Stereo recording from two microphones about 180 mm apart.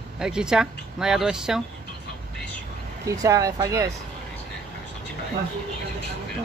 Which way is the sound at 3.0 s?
15° right (ahead or behind).